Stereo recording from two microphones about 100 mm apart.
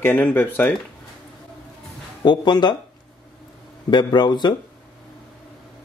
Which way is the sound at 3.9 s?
45° left (ahead or behind).